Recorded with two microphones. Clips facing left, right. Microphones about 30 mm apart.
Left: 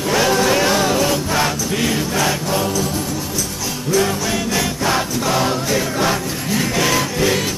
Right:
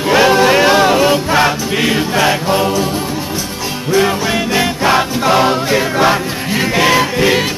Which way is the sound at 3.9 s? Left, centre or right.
Right.